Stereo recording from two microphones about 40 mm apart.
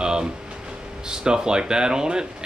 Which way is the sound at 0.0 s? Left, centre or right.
Centre.